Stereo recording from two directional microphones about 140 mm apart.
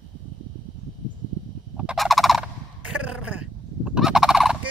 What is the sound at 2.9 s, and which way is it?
Fowl, 5° right (ahead or behind).